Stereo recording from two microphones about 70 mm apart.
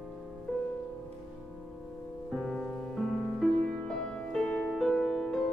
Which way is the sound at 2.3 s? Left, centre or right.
Centre.